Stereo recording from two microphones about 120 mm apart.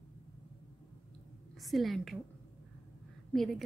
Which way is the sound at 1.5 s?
Centre (ahead or behind).